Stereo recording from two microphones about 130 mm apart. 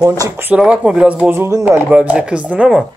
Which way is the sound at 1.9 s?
10° right (ahead or behind).